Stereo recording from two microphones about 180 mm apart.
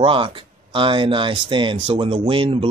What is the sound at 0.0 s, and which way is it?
Speech, 30° right (ahead or behind).